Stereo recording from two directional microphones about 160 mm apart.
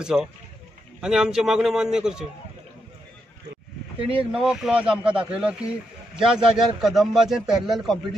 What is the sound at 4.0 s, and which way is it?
Speech, 35° right (ahead or behind).